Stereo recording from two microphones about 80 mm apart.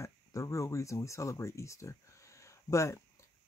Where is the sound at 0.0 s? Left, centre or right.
Left.